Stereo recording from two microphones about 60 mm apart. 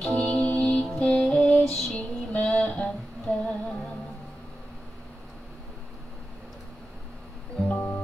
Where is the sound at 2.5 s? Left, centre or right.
Centre.